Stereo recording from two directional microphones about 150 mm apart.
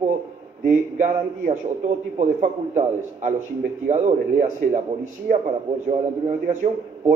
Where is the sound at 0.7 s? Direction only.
60° right (ahead or behind).